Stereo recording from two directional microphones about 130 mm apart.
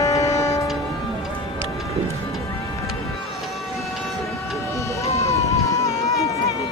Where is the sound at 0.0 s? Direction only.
25° left (ahead or behind).